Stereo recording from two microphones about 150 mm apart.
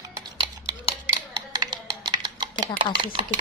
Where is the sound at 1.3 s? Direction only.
25° right (ahead or behind).